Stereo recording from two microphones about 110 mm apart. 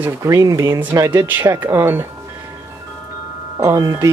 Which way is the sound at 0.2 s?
30° right (ahead or behind).